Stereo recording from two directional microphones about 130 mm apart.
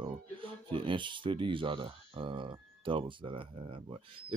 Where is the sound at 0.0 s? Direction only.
45° right (ahead or behind).